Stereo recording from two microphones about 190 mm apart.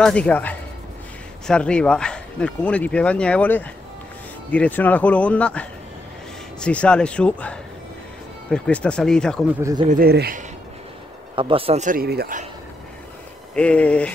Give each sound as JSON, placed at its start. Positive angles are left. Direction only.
{"t": 0.0, "sound": "speech", "side_deg": 5}
{"t": 9.5, "sound": "speech", "side_deg": -15}
{"t": 9.8, "sound": "speech", "side_deg": -50}
{"t": 11.3, "sound": "a man's voice", "side_deg": -30}
{"t": 13.6, "sound": "speech", "side_deg": 5}